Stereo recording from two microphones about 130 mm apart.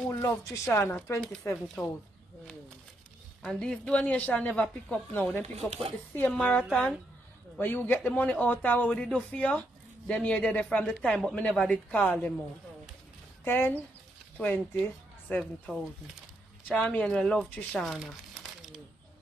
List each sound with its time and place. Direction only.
0.1 s a man's voice: 20° left (ahead or behind)
3.4 s a man's voice: 5° left (ahead or behind)
5.7 s speech: 55° right (ahead or behind)
6.3 s speech: centre (ahead or behind)
7.5 s a man's voice: 15° left (ahead or behind)
13.4 s a man's voice: 15° left (ahead or behind)
17.9 s crumpling: centre (ahead or behind)